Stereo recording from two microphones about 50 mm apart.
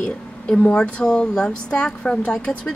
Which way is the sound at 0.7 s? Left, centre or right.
Centre.